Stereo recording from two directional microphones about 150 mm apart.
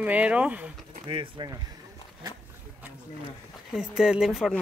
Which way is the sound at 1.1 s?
35° right (ahead or behind).